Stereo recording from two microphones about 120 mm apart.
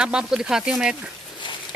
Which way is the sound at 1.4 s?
45° left (ahead or behind).